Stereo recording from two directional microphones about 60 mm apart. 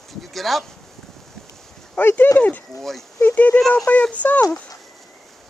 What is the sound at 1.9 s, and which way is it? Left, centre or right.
Speech, left.